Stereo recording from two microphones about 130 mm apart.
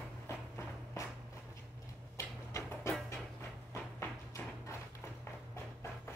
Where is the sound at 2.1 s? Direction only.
20° left (ahead or behind).